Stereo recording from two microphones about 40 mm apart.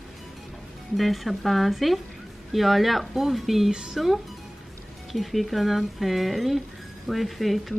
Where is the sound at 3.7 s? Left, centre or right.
Centre.